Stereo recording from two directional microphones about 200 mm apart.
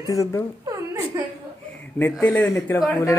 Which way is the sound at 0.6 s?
15° right (ahead or behind).